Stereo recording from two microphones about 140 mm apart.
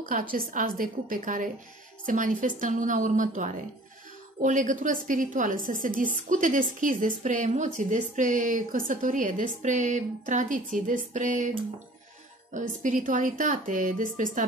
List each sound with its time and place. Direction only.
0.1 s a woman's voice: 80° right; by 11.5 s 65° right (ahead or behind)
12.5 s a woman's voice: 65° right (ahead or behind)